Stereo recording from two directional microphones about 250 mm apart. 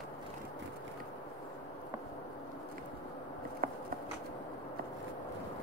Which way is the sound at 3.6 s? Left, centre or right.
Right.